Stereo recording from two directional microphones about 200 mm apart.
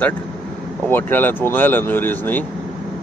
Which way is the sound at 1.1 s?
10° left (ahead or behind).